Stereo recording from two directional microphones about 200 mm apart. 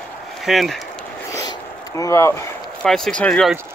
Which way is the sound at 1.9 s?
15° left (ahead or behind).